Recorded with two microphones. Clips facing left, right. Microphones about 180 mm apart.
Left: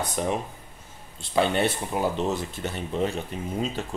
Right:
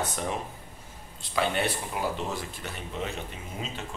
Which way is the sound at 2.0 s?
30° left (ahead or behind).